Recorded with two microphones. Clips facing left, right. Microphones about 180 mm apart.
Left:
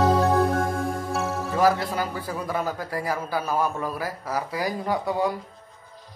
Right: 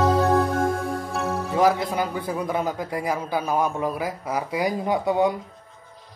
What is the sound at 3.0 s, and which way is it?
A man's voice, 20° right (ahead or behind).